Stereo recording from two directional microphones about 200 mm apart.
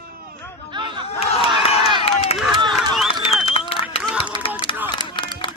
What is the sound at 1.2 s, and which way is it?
Crowd, 30° left (ahead or behind).